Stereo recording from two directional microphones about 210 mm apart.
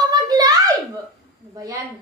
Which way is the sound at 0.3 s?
20° right (ahead or behind).